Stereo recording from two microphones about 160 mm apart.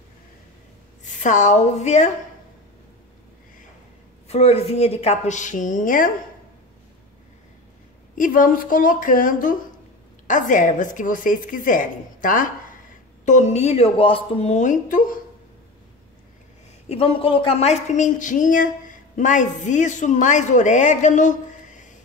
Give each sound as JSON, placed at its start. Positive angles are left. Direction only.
{"t": 1.2, "sound": "a woman's voice", "side_deg": 50}
{"t": 4.3, "sound": "a woman's voice", "side_deg": 40}
{"t": 8.2, "sound": "a woman's voice", "side_deg": 60}
{"t": 16.9, "sound": "a woman's voice", "side_deg": 35}